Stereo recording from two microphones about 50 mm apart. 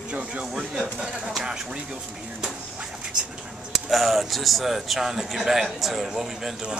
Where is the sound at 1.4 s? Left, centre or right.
Centre.